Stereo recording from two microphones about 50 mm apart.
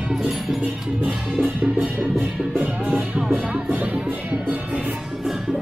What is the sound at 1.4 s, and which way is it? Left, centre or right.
Music, right.